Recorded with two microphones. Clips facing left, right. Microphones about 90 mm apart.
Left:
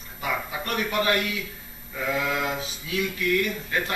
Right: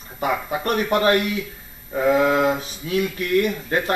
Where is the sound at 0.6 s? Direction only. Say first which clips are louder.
Right 6 dB; 35° right (ahead or behind).